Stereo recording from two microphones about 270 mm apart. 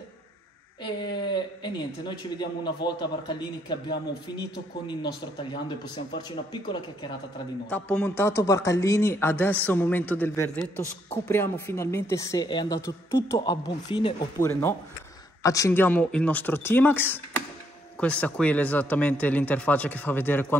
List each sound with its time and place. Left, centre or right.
1.2 s speech: centre